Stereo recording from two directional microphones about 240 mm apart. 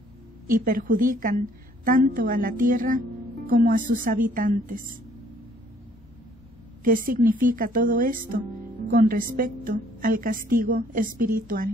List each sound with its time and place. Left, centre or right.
0.5 s a woman's voice: right
6.8 s a woman's voice: right